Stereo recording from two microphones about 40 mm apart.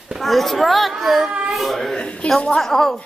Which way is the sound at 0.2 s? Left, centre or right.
Centre.